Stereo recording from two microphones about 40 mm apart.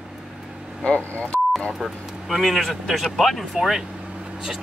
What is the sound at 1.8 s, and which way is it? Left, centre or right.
Speech, centre.